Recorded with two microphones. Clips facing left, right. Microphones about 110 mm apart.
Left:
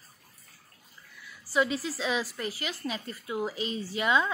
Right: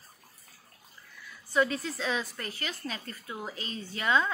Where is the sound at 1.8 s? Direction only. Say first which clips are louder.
Left 2 dB; 5° left (ahead or behind).